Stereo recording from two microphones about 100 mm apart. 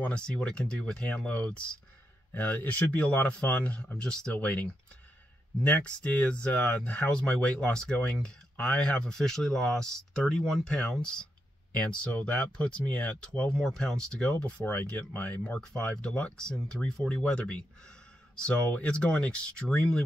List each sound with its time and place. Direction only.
0.0 s speech: 10° left (ahead or behind)